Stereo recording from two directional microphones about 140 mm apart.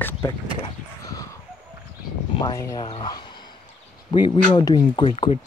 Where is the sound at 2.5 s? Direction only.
25° left (ahead or behind).